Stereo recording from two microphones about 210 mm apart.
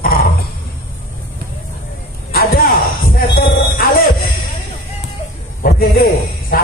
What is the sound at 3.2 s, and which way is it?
Music, 45° left (ahead or behind).